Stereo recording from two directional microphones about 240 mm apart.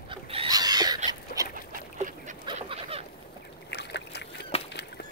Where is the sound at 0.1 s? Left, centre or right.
Right.